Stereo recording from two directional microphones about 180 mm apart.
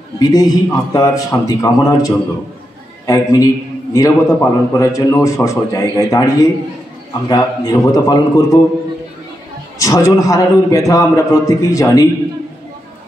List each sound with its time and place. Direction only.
0.2 s a man's voice: 20° left (ahead or behind)
9.8 s a man's voice: 20° left (ahead or behind)